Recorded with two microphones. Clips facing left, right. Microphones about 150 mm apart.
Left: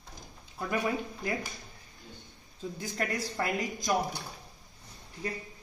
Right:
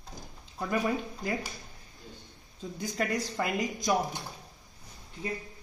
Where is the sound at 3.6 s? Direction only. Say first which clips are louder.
Right 2 dB; 20° right (ahead or behind).